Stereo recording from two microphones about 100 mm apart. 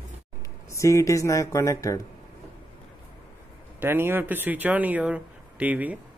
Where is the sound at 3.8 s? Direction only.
20° right (ahead or behind).